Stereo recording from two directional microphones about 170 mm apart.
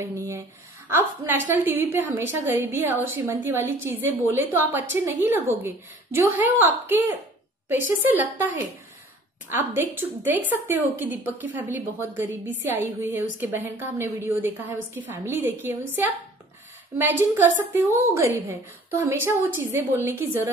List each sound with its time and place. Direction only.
0.0 s a sound: 15° right (ahead or behind)
0.8 s a woman's voice: 15° right (ahead or behind)
7.7 s a woman's voice: 10° right (ahead or behind)
9.5 s a woman's voice: 10° right (ahead or behind)